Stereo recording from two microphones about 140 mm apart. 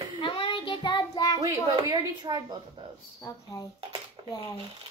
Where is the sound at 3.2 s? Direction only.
20° left (ahead or behind).